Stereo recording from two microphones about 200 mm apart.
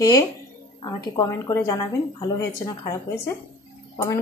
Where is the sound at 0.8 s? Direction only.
20° left (ahead or behind).